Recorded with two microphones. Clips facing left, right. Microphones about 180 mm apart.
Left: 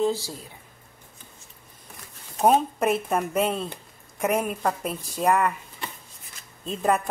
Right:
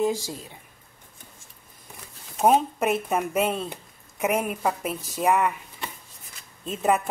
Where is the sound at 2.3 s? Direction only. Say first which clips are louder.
Even; centre (ahead or behind).